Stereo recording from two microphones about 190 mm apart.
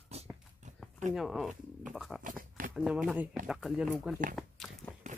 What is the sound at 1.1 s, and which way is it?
Speech, centre (ahead or behind).